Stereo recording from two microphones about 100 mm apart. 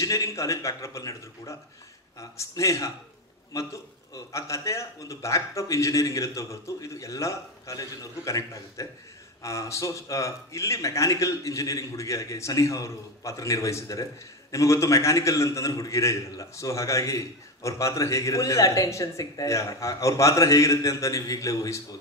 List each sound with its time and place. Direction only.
0.0 s a man's voice: 30° left (ahead or behind)